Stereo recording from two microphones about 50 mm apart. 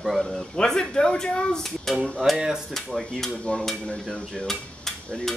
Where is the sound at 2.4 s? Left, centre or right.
Centre.